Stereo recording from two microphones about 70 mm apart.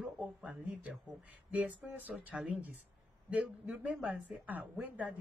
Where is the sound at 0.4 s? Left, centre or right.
Centre.